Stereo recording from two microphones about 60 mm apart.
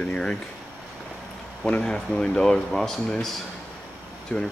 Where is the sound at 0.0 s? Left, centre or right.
Centre.